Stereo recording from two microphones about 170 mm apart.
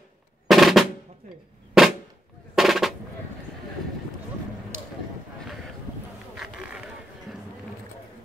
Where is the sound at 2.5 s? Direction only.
Centre (ahead or behind).